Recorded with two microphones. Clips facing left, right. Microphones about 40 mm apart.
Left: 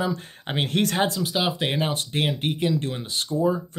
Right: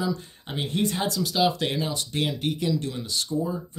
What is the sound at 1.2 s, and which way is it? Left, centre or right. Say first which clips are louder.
Speech: right 1 dB; left.